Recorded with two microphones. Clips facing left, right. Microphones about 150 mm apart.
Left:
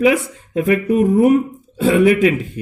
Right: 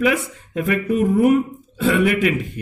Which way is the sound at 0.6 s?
40° left (ahead or behind).